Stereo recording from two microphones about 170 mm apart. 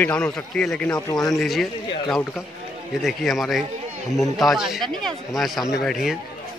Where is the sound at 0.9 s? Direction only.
25° left (ahead or behind).